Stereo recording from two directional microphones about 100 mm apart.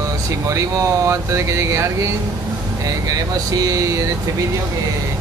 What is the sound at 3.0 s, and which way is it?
Speech, 35° right (ahead or behind).